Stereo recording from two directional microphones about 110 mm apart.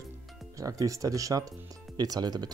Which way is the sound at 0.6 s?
30° right (ahead or behind).